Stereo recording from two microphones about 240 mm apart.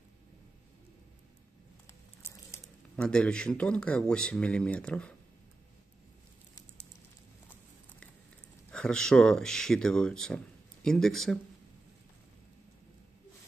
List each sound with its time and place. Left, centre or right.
2.6 s speech: centre
8.7 s speech: centre